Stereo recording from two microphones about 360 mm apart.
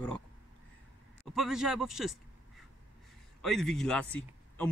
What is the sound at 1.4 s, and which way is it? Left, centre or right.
Speech, centre.